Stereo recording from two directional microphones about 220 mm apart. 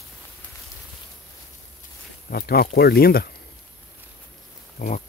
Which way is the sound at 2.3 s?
45° left (ahead or behind).